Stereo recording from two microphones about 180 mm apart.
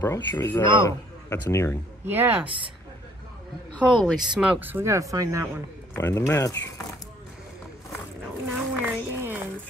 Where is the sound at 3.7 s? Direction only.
5° left (ahead or behind); by 5.5 s 20° right (ahead or behind).